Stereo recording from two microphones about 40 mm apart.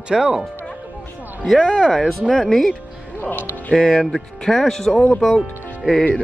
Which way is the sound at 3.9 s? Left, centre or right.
Centre.